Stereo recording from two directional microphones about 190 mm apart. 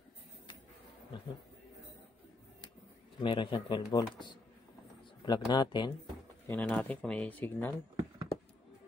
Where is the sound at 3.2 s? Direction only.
25° left (ahead or behind).